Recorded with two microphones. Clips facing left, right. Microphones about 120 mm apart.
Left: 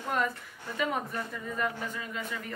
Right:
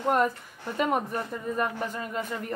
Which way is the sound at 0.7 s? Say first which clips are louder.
Right 5 dB; 45° right (ahead or behind).